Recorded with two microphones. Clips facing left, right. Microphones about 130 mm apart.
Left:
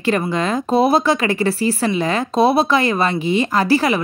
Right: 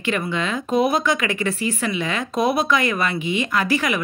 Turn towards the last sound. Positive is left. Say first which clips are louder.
# left 5 dB
turn(degrees=35)  # may be behind; listen again after turning